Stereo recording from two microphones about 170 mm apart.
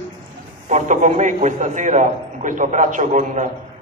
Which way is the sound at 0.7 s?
45° right (ahead or behind).